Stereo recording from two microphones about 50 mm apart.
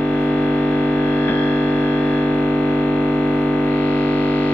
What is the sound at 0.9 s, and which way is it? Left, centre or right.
Music, left.